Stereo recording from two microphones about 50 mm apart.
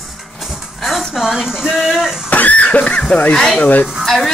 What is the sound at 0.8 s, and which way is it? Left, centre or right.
Speech, centre.